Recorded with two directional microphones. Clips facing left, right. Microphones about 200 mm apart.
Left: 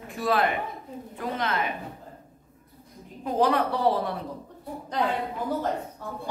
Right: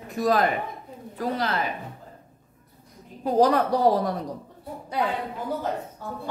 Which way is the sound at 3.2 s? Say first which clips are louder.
Right 4 dB; 35° right (ahead or behind).